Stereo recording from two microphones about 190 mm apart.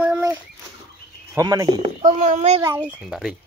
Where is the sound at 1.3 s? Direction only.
20° right (ahead or behind).